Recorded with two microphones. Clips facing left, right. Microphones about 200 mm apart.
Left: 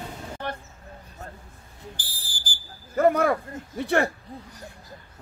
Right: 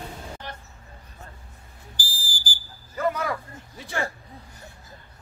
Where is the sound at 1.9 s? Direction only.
60° left (ahead or behind).